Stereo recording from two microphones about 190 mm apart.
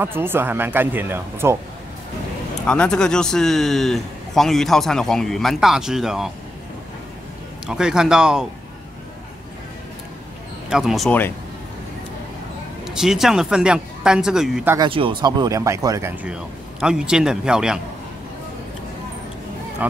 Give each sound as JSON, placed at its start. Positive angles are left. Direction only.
{"t": 0.0, "sound": "speech", "side_deg": -10}
{"t": 2.6, "sound": "a man's voice", "side_deg": 5}
{"t": 7.6, "sound": "a man's voice", "side_deg": -5}
{"t": 10.7, "sound": "a man's voice", "side_deg": 0}
{"t": 11.1, "sound": "speech", "side_deg": 10}
{"t": 12.8, "sound": "a man's voice", "side_deg": -5}
{"t": 14.8, "sound": "speech", "side_deg": -25}
{"t": 19.8, "sound": "speech", "side_deg": -10}